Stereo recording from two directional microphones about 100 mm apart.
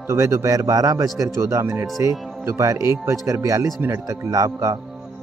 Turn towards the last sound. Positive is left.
turn(degrees=-30)  # may be behind; listen again after turning